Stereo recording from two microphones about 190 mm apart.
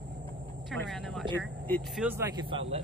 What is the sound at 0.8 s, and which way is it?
Speech, centre (ahead or behind).